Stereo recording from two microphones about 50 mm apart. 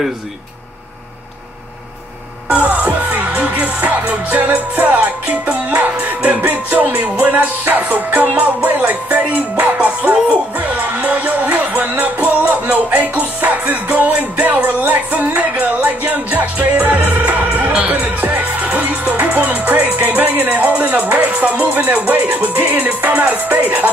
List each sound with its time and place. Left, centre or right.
2.5 s music: right
6.4 s speech: right
9.8 s music: right
17.7 s speech: right